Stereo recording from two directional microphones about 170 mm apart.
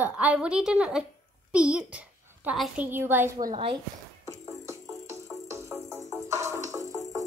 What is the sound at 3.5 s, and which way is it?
Speech, 30° right (ahead or behind).